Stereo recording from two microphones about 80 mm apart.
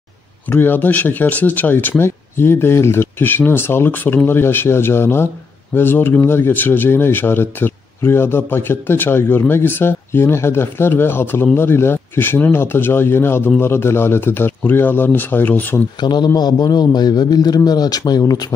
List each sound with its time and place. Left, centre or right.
0.5 s speech: left
16.0 s a man's voice: left